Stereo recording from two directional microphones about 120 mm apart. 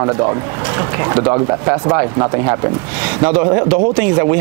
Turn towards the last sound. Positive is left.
turn(degrees=-20)  # may be behind; listen again after turning